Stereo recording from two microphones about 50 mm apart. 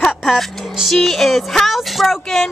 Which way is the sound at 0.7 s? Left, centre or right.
Centre.